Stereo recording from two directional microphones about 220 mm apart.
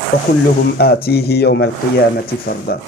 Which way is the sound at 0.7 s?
45° left (ahead or behind).